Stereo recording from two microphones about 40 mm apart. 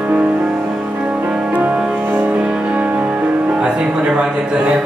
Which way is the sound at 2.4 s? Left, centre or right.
Right.